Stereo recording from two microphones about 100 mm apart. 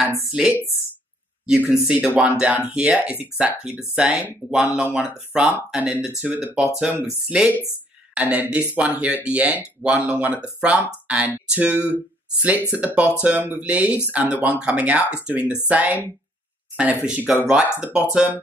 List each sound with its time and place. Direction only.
0.3 s speech: 5° right (ahead or behind)